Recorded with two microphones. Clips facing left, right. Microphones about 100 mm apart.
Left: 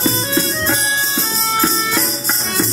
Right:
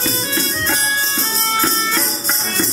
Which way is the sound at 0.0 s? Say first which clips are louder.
Left 4 dB; 25° left (ahead or behind).